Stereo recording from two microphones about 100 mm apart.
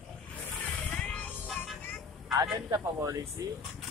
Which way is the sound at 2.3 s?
35° right (ahead or behind).